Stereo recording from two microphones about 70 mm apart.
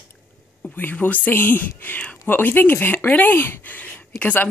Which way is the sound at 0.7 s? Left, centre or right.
Left.